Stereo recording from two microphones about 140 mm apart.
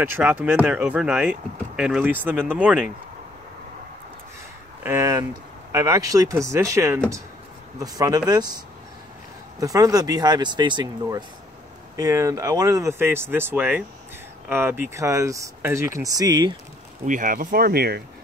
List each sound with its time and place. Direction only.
0.0 s speech: 15° right (ahead or behind)
4.8 s speech: 20° right (ahead or behind)
17.0 s speech: 70° right (ahead or behind); by 17.9 s 90° right